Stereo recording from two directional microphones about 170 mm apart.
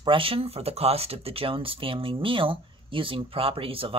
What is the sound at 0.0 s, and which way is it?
Speech, 30° right (ahead or behind).